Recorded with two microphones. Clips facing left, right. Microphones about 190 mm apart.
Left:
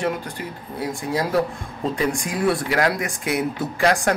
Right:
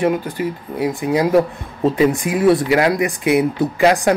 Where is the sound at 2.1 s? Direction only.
5° right (ahead or behind).